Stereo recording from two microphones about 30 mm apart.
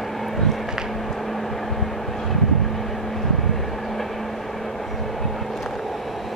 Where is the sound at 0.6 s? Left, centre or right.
Centre.